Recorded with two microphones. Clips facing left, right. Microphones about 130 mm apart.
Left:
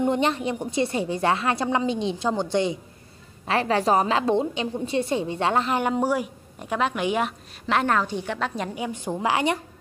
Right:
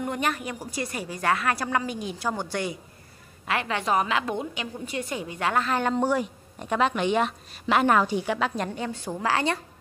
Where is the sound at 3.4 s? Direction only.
35° left (ahead or behind); by 7.3 s 5° left (ahead or behind).